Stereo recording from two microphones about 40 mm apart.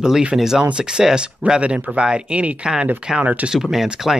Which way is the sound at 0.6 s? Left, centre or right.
Right.